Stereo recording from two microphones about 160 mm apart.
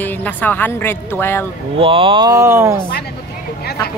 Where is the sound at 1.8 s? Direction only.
35° right (ahead or behind); by 2.8 s 15° right (ahead or behind).